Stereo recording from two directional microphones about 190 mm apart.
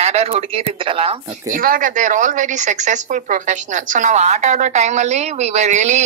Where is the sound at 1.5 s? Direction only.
45° right (ahead or behind).